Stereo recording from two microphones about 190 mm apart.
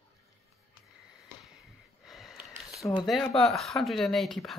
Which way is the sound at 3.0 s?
Centre (ahead or behind).